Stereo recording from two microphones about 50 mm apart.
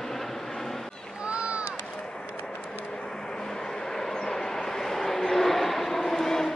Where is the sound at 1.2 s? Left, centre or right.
Right.